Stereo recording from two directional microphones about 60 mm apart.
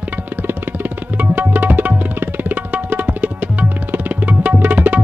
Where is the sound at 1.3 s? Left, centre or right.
Right.